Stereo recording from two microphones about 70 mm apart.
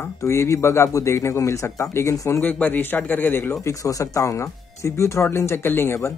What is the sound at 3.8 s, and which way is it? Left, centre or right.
Speech, left.